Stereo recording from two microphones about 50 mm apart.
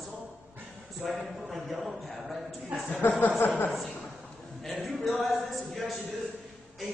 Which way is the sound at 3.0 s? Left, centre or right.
Left.